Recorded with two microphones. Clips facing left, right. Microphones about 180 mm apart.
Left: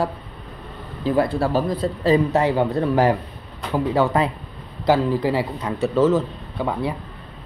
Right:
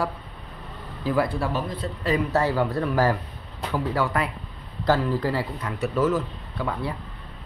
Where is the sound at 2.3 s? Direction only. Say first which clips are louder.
Left 4 dB; 20° left (ahead or behind).